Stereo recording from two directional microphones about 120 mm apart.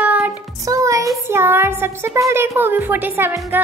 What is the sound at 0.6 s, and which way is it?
A child's voice, 25° right (ahead or behind).